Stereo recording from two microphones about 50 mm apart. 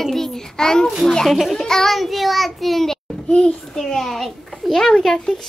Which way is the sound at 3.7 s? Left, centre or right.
Centre.